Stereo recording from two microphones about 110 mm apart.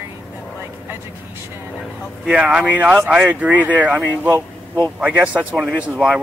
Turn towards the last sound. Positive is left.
turn(degrees=-10)  # may be behind; listen again after turning